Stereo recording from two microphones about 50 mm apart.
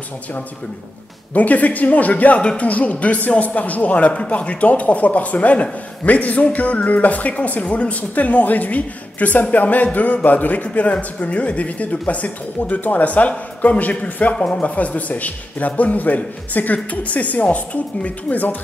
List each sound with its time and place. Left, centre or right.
1.3 s a man's voice: left